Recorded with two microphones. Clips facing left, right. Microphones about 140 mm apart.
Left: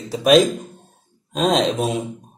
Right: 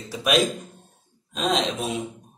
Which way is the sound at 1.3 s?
40° left (ahead or behind).